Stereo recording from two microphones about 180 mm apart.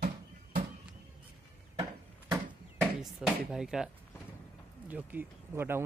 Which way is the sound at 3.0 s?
5° right (ahead or behind).